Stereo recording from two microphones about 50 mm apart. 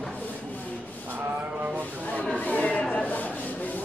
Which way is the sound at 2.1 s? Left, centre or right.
Left.